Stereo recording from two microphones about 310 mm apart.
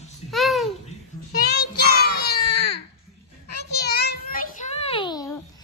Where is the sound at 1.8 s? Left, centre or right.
Left.